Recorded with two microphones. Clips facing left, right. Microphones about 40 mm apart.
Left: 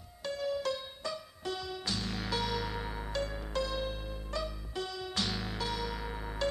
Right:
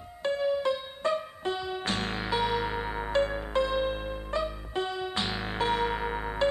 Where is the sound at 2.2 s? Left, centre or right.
Right.